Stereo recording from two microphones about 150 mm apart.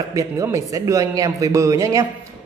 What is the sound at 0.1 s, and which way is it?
A man's voice, 20° right (ahead or behind).